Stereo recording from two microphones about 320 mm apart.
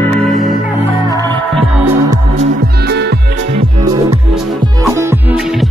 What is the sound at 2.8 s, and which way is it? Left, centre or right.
Music, right.